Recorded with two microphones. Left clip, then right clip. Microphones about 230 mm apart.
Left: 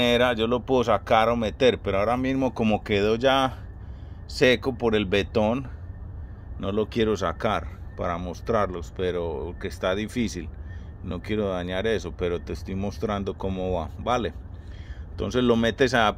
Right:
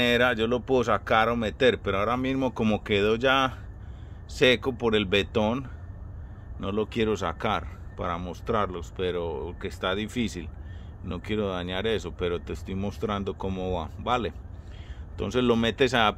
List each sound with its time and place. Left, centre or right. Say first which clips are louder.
0.0 s speech: left 1 dB; centre